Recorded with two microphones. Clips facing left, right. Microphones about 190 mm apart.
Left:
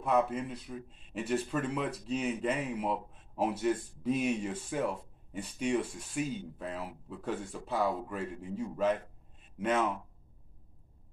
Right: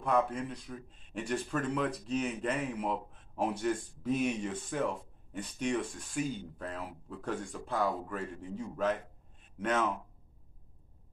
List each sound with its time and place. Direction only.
0.0 s speech: 5° left (ahead or behind)